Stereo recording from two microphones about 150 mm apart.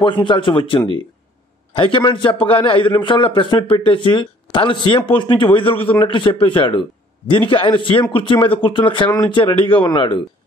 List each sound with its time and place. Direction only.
0.0 s speech: 35° left (ahead or behind)